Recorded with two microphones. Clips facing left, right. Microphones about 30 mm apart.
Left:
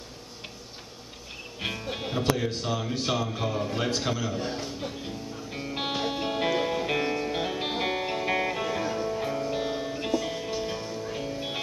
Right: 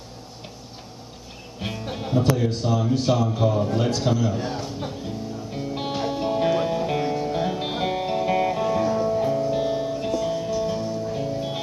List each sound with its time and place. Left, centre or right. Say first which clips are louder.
1.6 s speech: right 2 dB; centre
5.5 s music: right 2 dB; left
8.9 s music: right 7 dB; centre
9.2 s music: right 7 dB; centre
9.6 s music: right 6 dB; centre
9.9 s music: right 4 dB; centre
10.5 s music: right 7 dB; left
11.1 s music: right 5 dB; centre